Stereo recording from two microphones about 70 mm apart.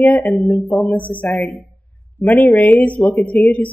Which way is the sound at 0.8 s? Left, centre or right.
Left.